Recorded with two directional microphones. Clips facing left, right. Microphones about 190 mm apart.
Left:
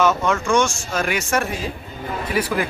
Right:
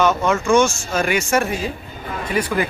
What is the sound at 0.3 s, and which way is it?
Speech, 5° right (ahead or behind).